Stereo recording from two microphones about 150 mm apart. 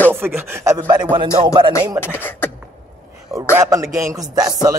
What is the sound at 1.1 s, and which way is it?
Speech, 35° right (ahead or behind).